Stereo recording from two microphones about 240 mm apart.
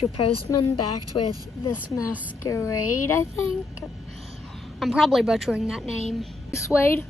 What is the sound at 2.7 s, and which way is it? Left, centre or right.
Speech, left.